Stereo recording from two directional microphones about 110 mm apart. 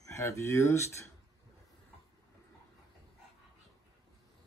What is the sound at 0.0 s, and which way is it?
Speech, 25° left (ahead or behind).